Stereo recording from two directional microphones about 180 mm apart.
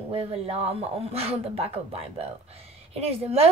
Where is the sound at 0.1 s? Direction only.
35° right (ahead or behind).